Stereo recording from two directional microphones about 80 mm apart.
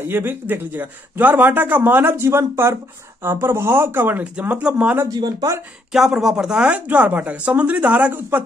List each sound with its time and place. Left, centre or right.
0.0 s a man's voice: right
5.0 s speech: right
5.9 s speech: centre